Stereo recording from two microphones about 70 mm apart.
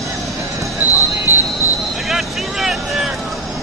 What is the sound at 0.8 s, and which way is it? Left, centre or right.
Basketball bounce, right.